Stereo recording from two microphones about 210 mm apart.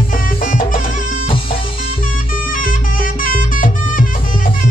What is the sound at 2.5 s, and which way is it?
Music, 40° left (ahead or behind).